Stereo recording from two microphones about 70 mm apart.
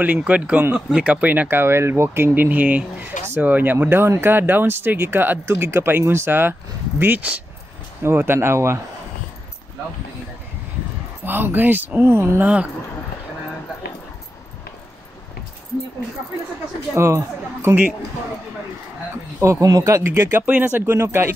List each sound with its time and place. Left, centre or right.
0.0 s speech: right
5.4 s speech: right
8.0 s speech: right
11.2 s speech: right
16.9 s speech: right
19.4 s speech: right
20.1 s speech: right